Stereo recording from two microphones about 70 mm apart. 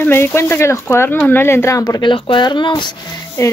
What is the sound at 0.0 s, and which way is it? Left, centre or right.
Speech, left.